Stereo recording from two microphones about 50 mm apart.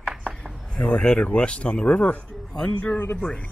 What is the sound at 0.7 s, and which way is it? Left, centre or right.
Speech, left.